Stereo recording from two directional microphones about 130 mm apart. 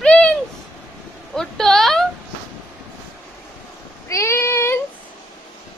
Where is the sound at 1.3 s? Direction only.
5° left (ahead or behind).